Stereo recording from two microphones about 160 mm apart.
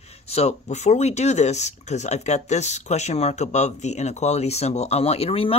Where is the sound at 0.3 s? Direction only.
40° left (ahead or behind).